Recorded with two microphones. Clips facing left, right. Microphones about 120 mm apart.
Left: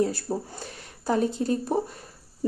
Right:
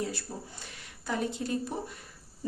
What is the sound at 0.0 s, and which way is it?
Speech, 40° left (ahead or behind).